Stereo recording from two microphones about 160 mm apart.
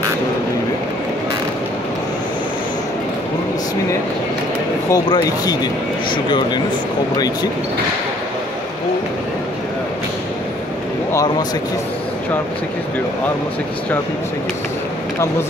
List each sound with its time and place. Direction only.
4.8 s speech: 25° left (ahead or behind)